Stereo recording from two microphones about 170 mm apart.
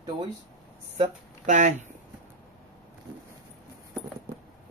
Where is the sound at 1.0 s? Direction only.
45° right (ahead or behind).